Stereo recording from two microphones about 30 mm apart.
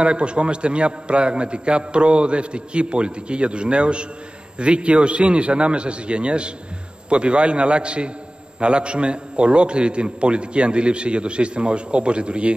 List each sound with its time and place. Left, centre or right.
0.0 s a man's voice: right